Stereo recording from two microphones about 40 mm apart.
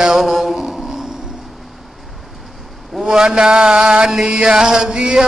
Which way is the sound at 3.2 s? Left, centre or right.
Centre.